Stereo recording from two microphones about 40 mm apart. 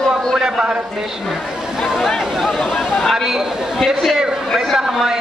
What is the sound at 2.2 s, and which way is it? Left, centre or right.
Speech, centre.